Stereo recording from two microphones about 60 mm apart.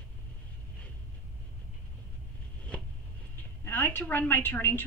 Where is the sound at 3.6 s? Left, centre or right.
Left.